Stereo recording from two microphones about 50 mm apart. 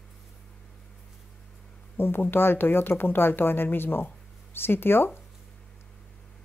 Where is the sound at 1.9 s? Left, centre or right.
Left.